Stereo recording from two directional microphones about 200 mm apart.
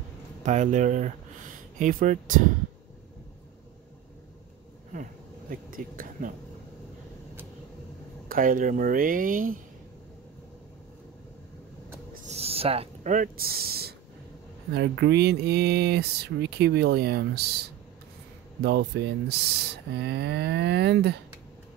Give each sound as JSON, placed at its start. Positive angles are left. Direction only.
{"t": 0.4, "sound": "speech", "side_deg": -35}
{"t": 5.5, "sound": "speech", "side_deg": -45}
{"t": 8.3, "sound": "speech", "side_deg": -45}
{"t": 12.1, "sound": "a sound", "side_deg": -30}
{"t": 14.7, "sound": "speech", "side_deg": -55}